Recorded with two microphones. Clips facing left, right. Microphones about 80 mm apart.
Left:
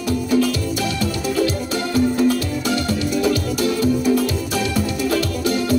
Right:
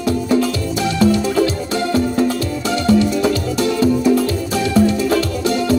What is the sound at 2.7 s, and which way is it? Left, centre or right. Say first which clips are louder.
Music: right 7 dB; right.